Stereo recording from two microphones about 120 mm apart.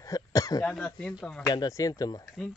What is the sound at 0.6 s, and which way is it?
Speech, 10° left (ahead or behind).